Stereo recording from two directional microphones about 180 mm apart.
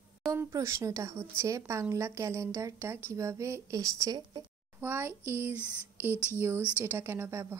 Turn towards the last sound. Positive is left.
turn(degrees=-15)  # may be behind; listen again after turning